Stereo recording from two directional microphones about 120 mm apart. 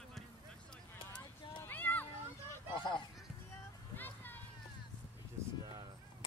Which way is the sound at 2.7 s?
45° left (ahead or behind).